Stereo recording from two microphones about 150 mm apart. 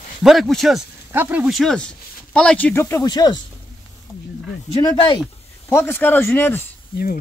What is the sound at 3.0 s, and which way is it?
Speech, 25° left (ahead or behind).